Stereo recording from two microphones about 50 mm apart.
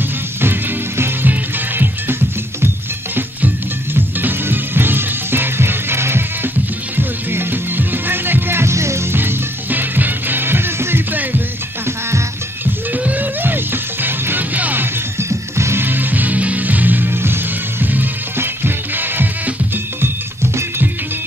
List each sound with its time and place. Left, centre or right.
0.4 s music: right
3.2 s music: right
8.7 s music: right
9.1 s music: right
12.9 s music: right
15.1 s music: right
15.8 s music: right